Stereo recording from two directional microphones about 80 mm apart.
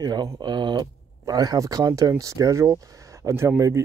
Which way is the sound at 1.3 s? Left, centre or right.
Right.